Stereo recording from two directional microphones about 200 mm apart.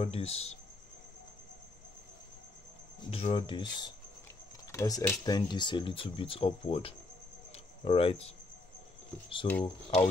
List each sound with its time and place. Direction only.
0.0 s speech: 30° left (ahead or behind)
3.1 s speech: 30° left (ahead or behind)
7.5 s cricket: 30° left (ahead or behind)
9.4 s speech: 25° left (ahead or behind)